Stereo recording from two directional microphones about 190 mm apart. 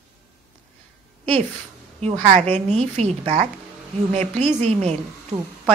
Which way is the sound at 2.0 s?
35° right (ahead or behind).